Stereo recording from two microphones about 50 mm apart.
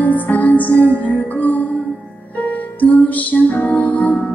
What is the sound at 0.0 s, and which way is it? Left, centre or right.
Music, left.